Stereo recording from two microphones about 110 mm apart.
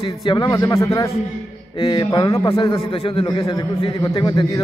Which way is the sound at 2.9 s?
50° left (ahead or behind).